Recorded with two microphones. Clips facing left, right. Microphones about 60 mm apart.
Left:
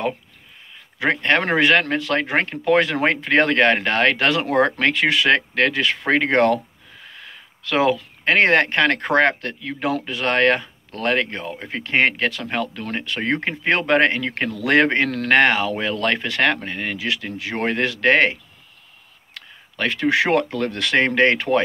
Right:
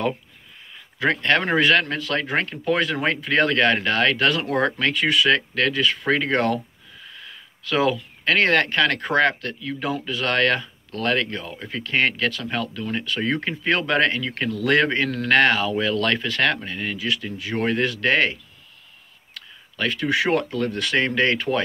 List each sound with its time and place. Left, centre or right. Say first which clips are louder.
0.9 s speech: left 1 dB; left
4.9 s speech: left 2 dB; left